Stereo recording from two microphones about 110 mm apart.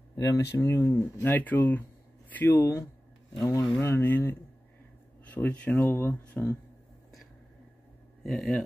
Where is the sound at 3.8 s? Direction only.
20° left (ahead or behind).